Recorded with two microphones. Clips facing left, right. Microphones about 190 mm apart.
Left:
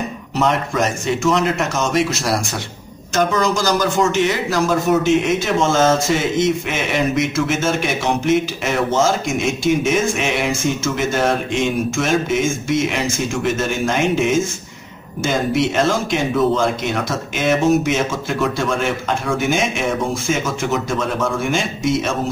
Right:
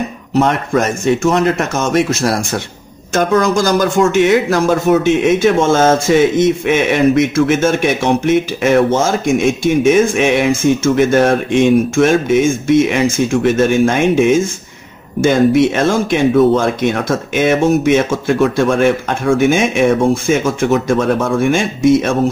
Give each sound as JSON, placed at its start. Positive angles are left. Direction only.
{"t": 0.4, "sound": "speech", "side_deg": -50}